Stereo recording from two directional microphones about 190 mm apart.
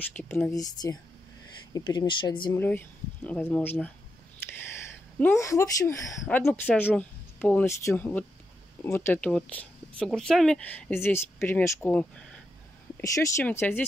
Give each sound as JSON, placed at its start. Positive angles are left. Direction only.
{"t": 0.1, "sound": "speech", "side_deg": 5}
{"t": 0.5, "sound": "speech", "side_deg": 20}
{"t": 2.5, "sound": "speech", "side_deg": 10}
{"t": 5.2, "sound": "speech", "side_deg": 15}